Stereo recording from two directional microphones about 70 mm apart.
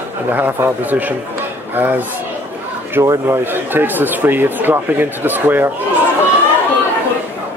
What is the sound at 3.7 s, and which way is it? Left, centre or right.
Speech, right.